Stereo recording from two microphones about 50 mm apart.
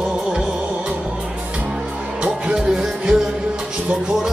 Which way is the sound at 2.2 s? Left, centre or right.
Centre.